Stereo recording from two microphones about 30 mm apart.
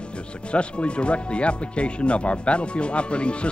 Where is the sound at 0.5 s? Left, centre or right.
Left.